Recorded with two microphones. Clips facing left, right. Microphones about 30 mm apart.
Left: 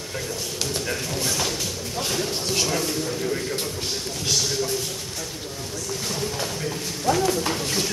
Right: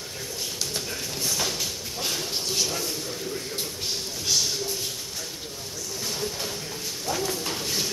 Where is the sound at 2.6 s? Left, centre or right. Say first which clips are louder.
Left 5 dB; left.